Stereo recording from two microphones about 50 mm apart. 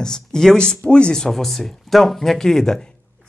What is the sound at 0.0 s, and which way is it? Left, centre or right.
Speech, centre.